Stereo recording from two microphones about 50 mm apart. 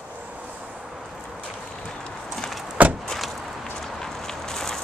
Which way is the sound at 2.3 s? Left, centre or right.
Centre.